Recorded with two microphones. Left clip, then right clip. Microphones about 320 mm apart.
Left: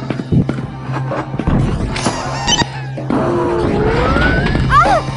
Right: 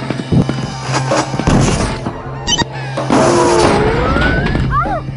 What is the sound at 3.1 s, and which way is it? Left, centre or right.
Music, right.